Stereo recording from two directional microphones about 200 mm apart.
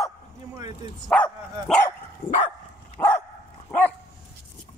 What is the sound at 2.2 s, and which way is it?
Dog, 25° left (ahead or behind).